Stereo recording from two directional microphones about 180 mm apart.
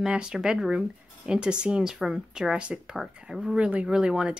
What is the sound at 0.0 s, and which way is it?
Speech, 5° right (ahead or behind).